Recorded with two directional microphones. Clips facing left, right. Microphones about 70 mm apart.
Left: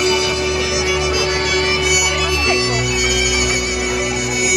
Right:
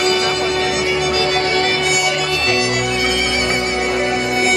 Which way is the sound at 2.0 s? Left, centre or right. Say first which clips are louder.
Even; centre.